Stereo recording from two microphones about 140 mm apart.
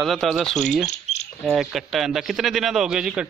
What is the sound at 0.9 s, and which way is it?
Cricket, 50° left (ahead or behind).